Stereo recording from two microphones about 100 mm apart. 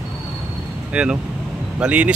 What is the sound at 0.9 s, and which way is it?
Speech, 10° right (ahead or behind).